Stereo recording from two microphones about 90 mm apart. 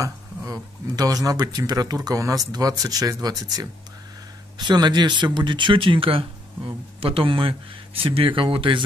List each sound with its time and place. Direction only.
0.0 s speech: 40° right (ahead or behind)
4.6 s speech: 55° right (ahead or behind); by 8.8 s 75° right (ahead or behind)